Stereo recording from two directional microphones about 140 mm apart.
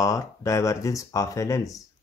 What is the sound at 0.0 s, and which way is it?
Speech, 25° left (ahead or behind).